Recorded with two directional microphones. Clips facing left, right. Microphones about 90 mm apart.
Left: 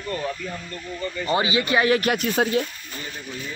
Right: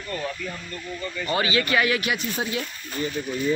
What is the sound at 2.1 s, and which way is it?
Speech, 60° left (ahead or behind).